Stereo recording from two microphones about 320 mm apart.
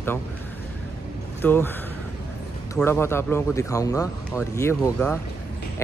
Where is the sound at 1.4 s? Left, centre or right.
Centre.